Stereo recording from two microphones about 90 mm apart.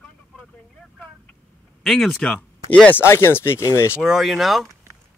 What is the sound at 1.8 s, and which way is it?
Speech, 5° left (ahead or behind).